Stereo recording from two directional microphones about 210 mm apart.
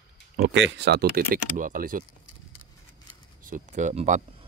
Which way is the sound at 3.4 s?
40° right (ahead or behind).